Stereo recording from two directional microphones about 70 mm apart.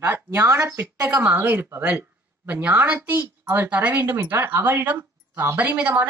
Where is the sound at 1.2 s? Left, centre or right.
Right.